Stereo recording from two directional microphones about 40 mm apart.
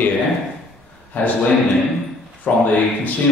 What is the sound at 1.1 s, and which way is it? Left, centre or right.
Speech, left.